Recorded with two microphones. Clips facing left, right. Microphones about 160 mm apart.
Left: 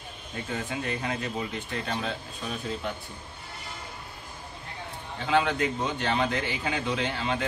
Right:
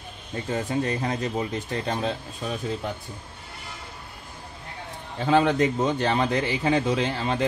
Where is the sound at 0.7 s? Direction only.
35° right (ahead or behind).